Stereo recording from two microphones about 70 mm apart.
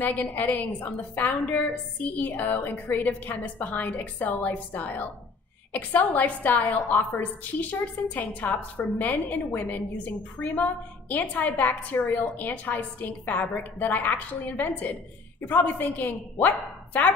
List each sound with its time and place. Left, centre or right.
0.0 s a woman's voice: left